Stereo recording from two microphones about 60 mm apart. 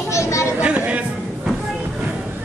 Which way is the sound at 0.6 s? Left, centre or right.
Right.